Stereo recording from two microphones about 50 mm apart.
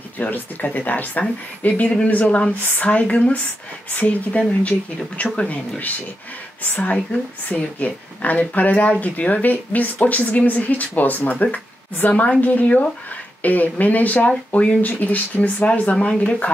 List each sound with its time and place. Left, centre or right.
0.2 s speech: left
6.8 s speech: left